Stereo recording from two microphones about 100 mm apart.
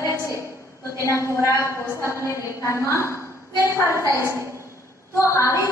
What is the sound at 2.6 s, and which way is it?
Speech, 30° left (ahead or behind).